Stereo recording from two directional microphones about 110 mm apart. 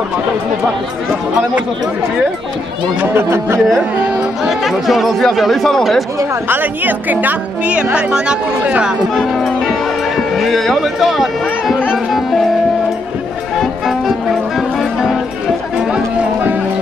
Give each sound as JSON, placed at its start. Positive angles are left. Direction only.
{"t": 3.0, "sound": "speech", "side_deg": -20}
{"t": 4.5, "sound": "a woman's voice", "side_deg": 0}
{"t": 6.5, "sound": "a woman's voice", "side_deg": -15}
{"t": 11.9, "sound": "music", "side_deg": 0}
{"t": 13.6, "sound": "music", "side_deg": 0}